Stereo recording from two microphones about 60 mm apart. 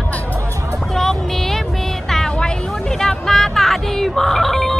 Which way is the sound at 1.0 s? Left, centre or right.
Centre.